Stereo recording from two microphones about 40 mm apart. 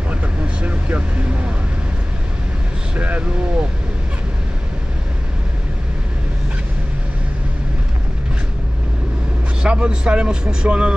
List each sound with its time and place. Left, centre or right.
0.1 s vehicle: right
3.0 s speech: right
9.6 s speech: right